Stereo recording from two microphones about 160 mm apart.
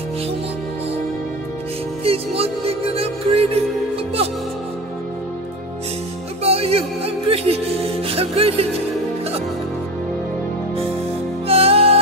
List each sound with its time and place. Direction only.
2.0 s music: 35° right (ahead or behind)
6.4 s music: 40° right (ahead or behind)
11.4 s music: 40° right (ahead or behind)